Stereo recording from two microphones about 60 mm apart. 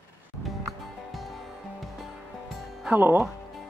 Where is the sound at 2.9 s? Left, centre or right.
Right.